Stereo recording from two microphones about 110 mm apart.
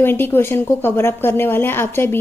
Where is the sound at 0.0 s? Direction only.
20° left (ahead or behind).